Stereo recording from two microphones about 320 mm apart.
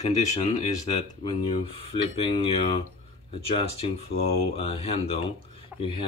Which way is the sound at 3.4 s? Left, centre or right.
Centre.